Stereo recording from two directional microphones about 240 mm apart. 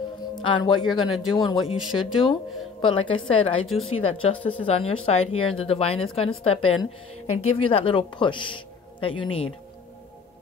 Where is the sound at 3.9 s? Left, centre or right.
Left.